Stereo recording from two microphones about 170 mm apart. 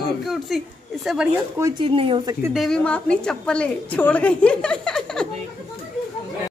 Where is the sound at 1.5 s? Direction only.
20° right (ahead or behind).